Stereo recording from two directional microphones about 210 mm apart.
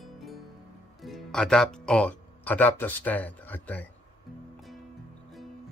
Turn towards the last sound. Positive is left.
turn(degrees=10)  # may be behind; listen again after turning